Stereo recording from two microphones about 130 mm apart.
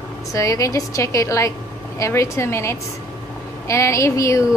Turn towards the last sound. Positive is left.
turn(degrees=25)  # may be behind; listen again after turning